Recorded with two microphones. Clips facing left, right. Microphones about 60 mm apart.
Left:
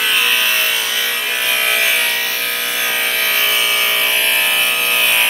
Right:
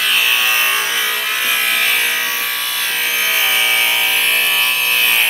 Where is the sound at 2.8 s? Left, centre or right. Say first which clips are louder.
Even; centre.